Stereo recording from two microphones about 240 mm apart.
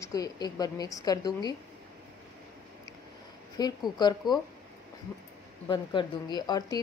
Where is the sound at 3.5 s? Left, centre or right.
Centre.